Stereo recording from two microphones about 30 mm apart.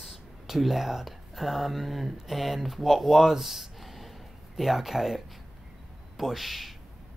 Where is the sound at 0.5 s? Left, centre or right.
Centre.